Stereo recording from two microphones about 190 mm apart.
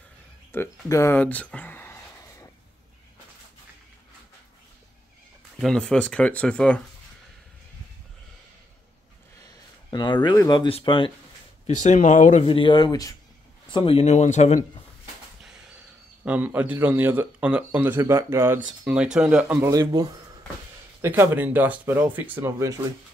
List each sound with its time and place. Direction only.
0.5 s a sound: 15° left (ahead or behind)
5.6 s speech: 5° left (ahead or behind)
9.8 s speech: 25° left (ahead or behind)
11.6 s speech: 40° left (ahead or behind)
12.4 s speech: 25° left (ahead or behind)
16.3 s speech: 10° right (ahead or behind)